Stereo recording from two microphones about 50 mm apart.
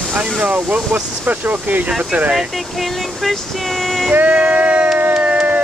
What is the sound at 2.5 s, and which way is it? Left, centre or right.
Speech, centre.